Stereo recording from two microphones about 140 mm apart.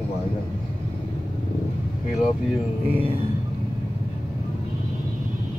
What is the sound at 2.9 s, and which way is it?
Music, 40° right (ahead or behind).